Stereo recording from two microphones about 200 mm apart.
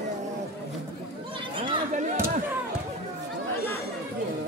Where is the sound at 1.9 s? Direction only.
40° right (ahead or behind).